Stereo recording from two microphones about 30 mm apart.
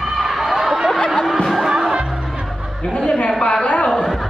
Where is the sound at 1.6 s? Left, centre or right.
Right.